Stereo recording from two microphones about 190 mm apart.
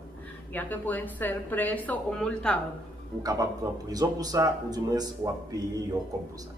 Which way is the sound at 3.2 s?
20° right (ahead or behind).